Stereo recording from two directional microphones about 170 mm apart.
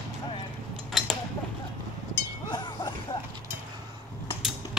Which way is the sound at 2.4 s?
25° left (ahead or behind).